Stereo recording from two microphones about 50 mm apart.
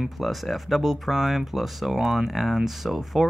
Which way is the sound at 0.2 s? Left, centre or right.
Centre.